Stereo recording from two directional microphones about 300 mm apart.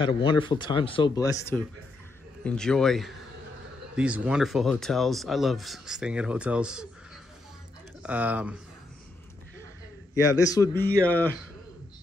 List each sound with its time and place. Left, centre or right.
0.0 s speech: centre
8.0 s speech: centre
10.1 s speech: centre